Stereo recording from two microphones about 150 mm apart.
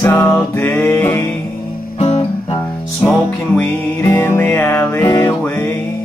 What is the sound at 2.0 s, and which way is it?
Music, 40° left (ahead or behind).